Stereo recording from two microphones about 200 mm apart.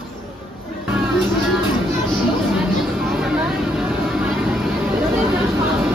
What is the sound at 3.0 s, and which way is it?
Vehicle, centre (ahead or behind).